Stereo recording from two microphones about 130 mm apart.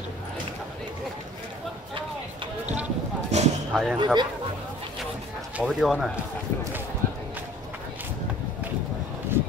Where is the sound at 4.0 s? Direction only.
35° right (ahead or behind).